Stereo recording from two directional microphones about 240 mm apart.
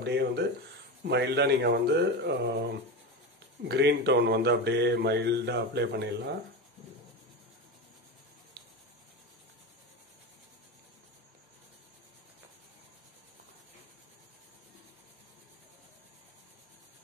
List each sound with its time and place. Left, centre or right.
0.0 s speech: right
3.6 s speech: right
8.6 s rub: right